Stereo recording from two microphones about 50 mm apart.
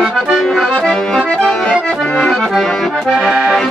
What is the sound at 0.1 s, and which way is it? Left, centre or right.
Accordion, centre.